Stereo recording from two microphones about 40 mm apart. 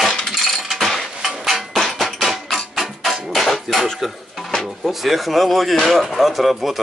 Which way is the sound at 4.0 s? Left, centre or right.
Centre.